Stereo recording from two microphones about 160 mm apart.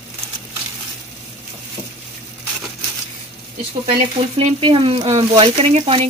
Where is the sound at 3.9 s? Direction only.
40° right (ahead or behind).